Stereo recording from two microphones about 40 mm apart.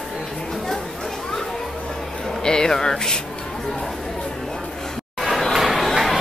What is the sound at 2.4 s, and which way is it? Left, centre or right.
Speech, centre.